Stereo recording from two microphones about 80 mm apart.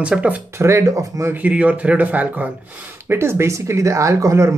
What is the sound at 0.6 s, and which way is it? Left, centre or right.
Speech, right.